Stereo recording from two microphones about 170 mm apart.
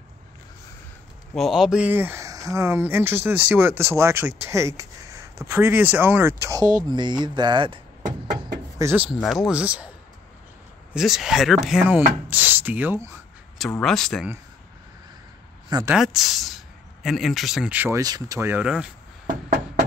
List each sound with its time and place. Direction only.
1.3 s speech: centre (ahead or behind); by 7.8 s 30° right (ahead or behind)
8.7 s speech: 10° right (ahead or behind)
9.2 s speech: centre (ahead or behind)
10.9 s speech: centre (ahead or behind)
13.6 s speech: 5° left (ahead or behind)
15.9 s speech: centre (ahead or behind)